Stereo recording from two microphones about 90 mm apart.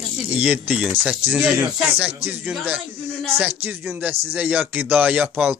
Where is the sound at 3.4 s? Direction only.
25° right (ahead or behind).